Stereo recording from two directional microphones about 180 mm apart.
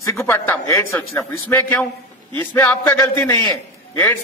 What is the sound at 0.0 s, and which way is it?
A man's voice, 15° left (ahead or behind).